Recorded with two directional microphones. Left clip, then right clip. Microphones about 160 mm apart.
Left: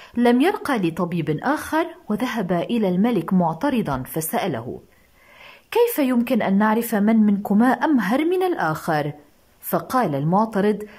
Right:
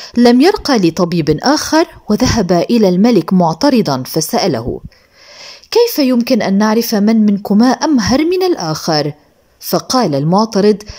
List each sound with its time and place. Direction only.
0.0 s speech: 30° right (ahead or behind)
5.7 s speech: 25° right (ahead or behind)